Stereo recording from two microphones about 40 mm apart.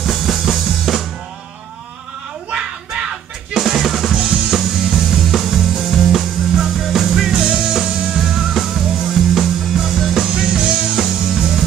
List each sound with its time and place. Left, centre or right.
0.0 s drum kit: centre
2.5 s a sound: right
3.5 s drum: centre
4.1 s drum kit: right
4.6 s music: centre
6.5 s music: centre
10.1 s music: centre